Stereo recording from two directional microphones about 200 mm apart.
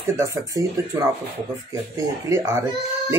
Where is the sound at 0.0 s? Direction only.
15° right (ahead or behind).